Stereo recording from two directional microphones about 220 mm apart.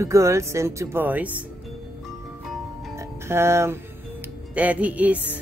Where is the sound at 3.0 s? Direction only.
10° right (ahead or behind).